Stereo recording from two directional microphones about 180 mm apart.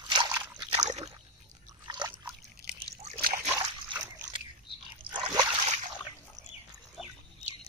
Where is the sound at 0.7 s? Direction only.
40° right (ahead or behind).